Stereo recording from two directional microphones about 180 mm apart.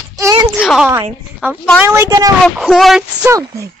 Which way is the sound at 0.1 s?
20° right (ahead or behind).